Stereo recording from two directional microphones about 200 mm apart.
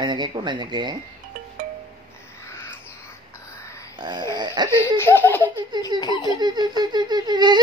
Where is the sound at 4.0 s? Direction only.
20° right (ahead or behind).